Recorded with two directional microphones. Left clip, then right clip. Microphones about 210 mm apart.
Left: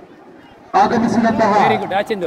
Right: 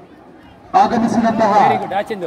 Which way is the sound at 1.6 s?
45° left (ahead or behind).